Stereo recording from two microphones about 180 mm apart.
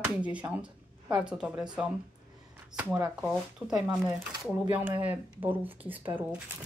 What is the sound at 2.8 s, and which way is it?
Speech, 10° right (ahead or behind).